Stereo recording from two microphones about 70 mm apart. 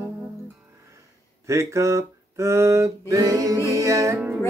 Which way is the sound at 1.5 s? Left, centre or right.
Right.